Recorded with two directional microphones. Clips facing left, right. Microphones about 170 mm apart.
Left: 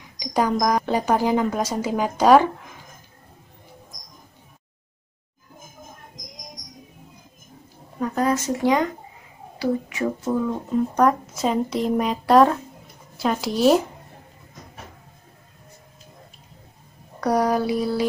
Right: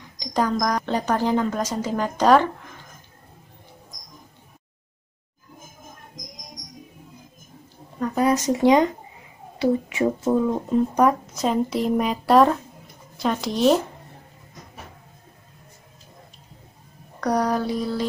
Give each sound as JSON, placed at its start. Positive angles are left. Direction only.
{"t": 0.2, "sound": "a woman's voice", "side_deg": 10}
{"t": 8.0, "sound": "a sound", "side_deg": -5}
{"t": 8.3, "sound": "speech", "side_deg": -15}
{"t": 11.0, "sound": "speech", "side_deg": 0}
{"t": 17.2, "sound": "a woman's voice", "side_deg": 5}